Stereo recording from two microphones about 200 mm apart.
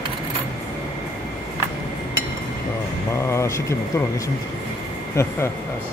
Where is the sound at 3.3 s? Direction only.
15° left (ahead or behind).